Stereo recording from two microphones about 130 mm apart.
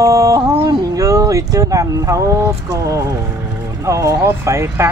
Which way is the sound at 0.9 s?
25° right (ahead or behind).